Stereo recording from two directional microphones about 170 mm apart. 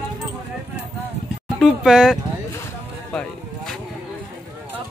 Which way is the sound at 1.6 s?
Centre (ahead or behind).